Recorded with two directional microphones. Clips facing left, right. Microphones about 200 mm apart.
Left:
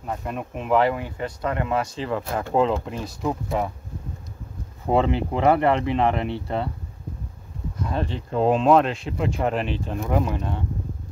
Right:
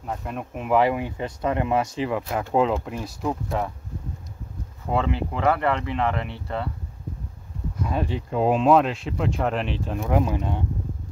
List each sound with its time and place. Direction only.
0.0 s speech: centre (ahead or behind)
4.8 s speech: 25° left (ahead or behind)
7.8 s speech: 10° right (ahead or behind)
10.2 s speech: 10° right (ahead or behind)